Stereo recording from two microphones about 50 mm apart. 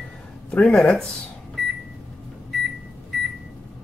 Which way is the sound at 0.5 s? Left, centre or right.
Left.